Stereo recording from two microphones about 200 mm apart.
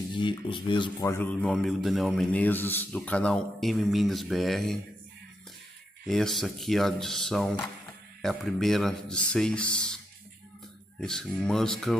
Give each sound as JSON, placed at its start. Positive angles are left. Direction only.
{"t": 0.1, "sound": "speech", "side_deg": 25}
{"t": 1.4, "sound": "a man's voice", "side_deg": 0}
{"t": 6.0, "sound": "a man's voice", "side_deg": 0}
{"t": 11.0, "sound": "a man's voice", "side_deg": 0}